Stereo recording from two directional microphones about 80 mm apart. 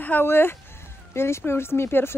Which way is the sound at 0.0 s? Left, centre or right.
Left.